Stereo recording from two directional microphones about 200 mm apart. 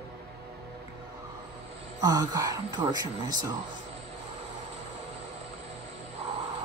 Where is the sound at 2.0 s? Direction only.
20° right (ahead or behind).